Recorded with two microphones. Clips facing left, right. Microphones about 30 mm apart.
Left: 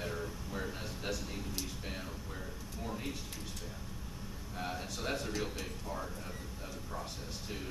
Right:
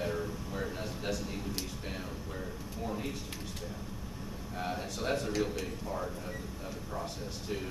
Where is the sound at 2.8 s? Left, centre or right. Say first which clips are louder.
Right 4 dB; centre.